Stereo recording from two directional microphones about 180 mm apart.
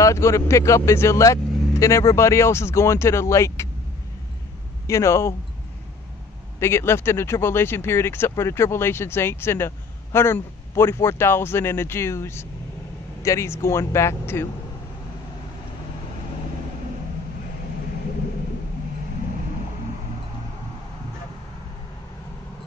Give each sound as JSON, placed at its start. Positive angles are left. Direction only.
{"t": 0.0, "sound": "speech", "side_deg": 15}
{"t": 4.8, "sound": "speech", "side_deg": 15}
{"t": 6.6, "sound": "speech", "side_deg": 15}